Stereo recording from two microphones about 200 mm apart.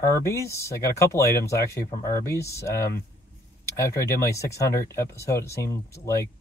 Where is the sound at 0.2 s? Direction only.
15° left (ahead or behind).